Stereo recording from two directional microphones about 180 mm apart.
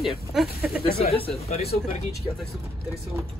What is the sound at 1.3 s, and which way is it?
Speech, 35° left (ahead or behind).